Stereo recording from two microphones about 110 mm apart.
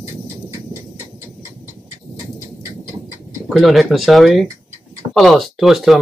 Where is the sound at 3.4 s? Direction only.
Centre (ahead or behind).